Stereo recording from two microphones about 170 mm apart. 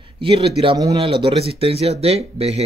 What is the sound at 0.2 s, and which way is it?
Speech, 30° right (ahead or behind).